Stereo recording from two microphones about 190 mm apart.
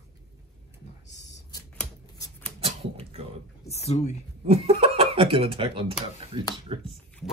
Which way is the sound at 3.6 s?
35° left (ahead or behind).